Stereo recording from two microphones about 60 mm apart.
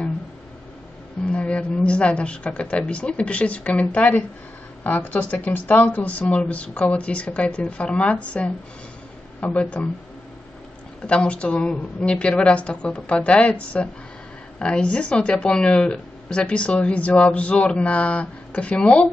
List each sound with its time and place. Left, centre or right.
1.2 s a woman's voice: centre
11.1 s speech: left